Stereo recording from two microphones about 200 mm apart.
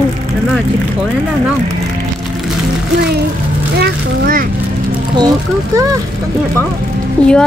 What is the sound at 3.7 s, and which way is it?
Vehicle, 50° right (ahead or behind).